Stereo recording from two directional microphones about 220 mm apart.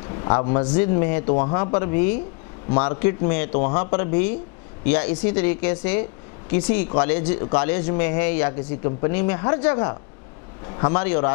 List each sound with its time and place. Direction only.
0.1 s a man's voice: 25° left (ahead or behind)
10.9 s speech: 10° left (ahead or behind)